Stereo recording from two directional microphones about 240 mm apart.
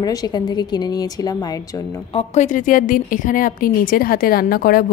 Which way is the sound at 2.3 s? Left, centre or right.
Left.